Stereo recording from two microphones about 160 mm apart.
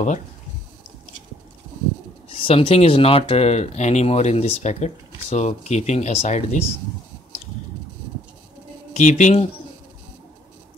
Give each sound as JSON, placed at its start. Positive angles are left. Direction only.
{"t": 2.4, "sound": "speech", "side_deg": 35}
{"t": 8.9, "sound": "speech", "side_deg": 50}